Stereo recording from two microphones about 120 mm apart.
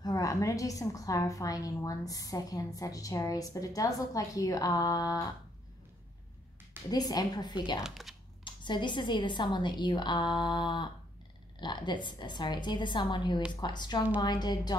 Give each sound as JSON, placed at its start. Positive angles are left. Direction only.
{"t": 0.0, "sound": "a woman's voice", "side_deg": 30}
{"t": 6.9, "sound": "a woman's voice", "side_deg": 35}
{"t": 7.8, "sound": "speech", "side_deg": 0}
{"t": 8.5, "sound": "a woman's voice", "side_deg": 40}